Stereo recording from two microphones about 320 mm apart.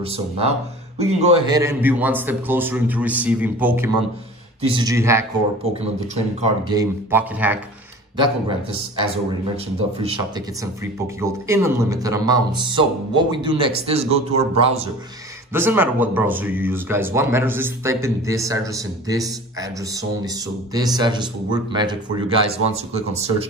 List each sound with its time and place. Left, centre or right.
0.0 s a man's voice: centre
5.8 s speech: centre
8.2 s speech: centre
15.5 s speech: centre